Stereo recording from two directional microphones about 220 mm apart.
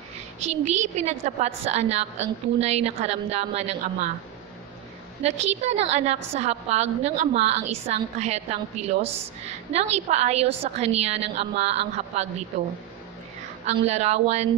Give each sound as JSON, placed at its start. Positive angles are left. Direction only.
{"t": 0.4, "sound": "a woman's voice", "side_deg": -30}
{"t": 5.2, "sound": "a woman's voice", "side_deg": -30}
{"t": 13.7, "sound": "a woman's voice", "side_deg": -30}